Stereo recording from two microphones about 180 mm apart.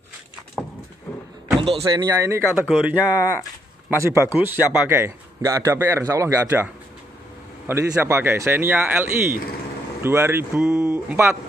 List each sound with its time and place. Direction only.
1.6 s a man's voice: 30° right (ahead or behind); by 3.0 s 5° right (ahead or behind)
4.0 s a man's voice: 15° right (ahead or behind)